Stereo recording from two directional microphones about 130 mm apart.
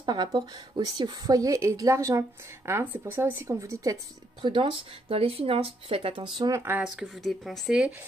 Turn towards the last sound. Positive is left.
turn(degrees=-5)  # may be behind; listen again after turning